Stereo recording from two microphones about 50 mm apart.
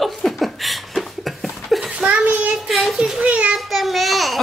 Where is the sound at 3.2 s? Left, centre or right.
Right.